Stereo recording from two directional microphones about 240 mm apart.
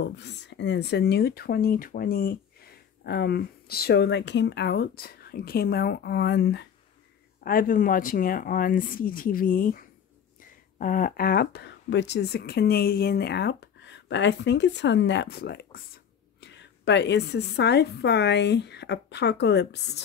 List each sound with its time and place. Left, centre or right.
0.0 s speech: left